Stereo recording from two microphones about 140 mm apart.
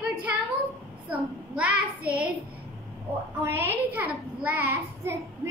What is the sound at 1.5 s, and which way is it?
Child singing, 10° right (ahead or behind).